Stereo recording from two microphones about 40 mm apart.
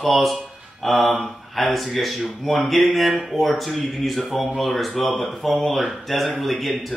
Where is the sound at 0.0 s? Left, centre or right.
Centre.